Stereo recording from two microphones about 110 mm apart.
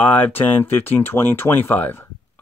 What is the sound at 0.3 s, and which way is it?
Speech, 15° left (ahead or behind).